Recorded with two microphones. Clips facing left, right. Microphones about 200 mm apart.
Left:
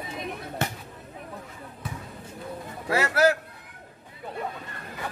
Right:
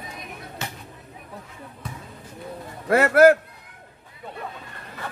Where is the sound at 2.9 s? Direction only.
55° right (ahead or behind).